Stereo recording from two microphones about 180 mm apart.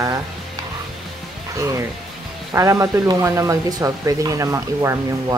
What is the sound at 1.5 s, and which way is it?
Speech, 20° right (ahead or behind).